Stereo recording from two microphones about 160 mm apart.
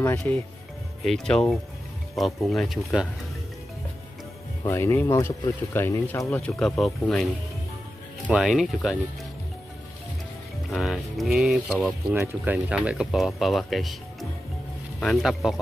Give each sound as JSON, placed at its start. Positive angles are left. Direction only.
{"t": 0.3, "sound": "speech", "side_deg": 10}
{"t": 4.6, "sound": "speech", "side_deg": 15}
{"t": 6.4, "sound": "speech", "side_deg": 0}
{"t": 8.3, "sound": "speech", "side_deg": -5}
{"t": 10.7, "sound": "speech", "side_deg": 0}
{"t": 15.0, "sound": "speech", "side_deg": 0}